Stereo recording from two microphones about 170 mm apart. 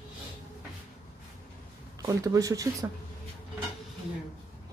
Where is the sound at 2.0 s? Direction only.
20° right (ahead or behind).